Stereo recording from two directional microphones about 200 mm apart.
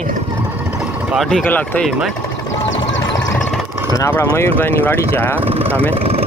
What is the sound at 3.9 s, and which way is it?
Speech, 10° left (ahead or behind).